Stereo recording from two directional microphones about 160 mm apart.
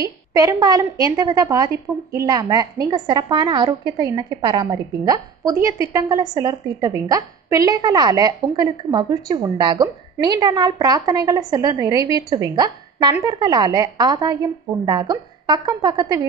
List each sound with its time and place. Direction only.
0.0 s a woman's voice: 25° right (ahead or behind)